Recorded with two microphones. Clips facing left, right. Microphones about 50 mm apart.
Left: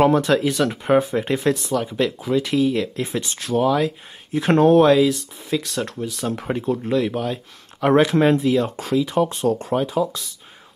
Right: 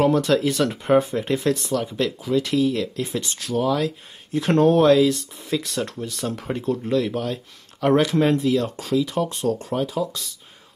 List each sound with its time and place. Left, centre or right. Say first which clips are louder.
0.0 s speech: left 2 dB; left
0.4 s speech: left 1 dB; centre
1.5 s speech: left 1 dB; centre
6.2 s speech: left 2 dB; centre